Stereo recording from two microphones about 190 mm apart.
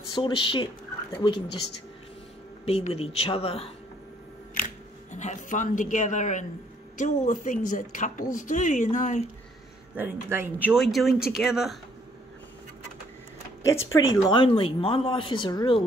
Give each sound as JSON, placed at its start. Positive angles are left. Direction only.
{"t": 0.1, "sound": "a woman's voice", "side_deg": 25}
{"t": 2.6, "sound": "a woman's voice", "side_deg": 30}
{"t": 9.9, "sound": "speech", "side_deg": -10}
{"t": 13.9, "sound": "a woman's voice", "side_deg": 20}